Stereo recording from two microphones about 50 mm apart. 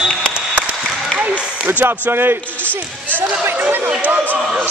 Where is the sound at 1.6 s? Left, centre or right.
Right.